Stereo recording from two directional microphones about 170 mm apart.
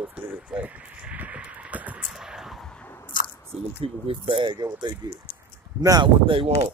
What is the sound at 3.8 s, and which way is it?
Speech, 35° right (ahead or behind).